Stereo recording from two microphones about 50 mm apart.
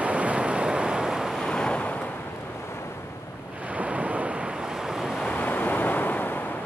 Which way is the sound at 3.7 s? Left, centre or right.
Right.